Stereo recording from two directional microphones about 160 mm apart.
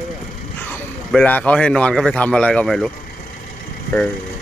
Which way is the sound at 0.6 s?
10° left (ahead or behind).